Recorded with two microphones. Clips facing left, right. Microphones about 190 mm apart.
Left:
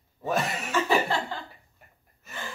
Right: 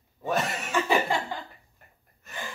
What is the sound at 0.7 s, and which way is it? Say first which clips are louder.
Chuckle: even; 15° right (ahead or behind).